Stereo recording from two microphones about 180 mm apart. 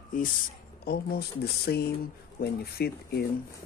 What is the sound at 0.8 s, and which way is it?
Speech, 60° left (ahead or behind).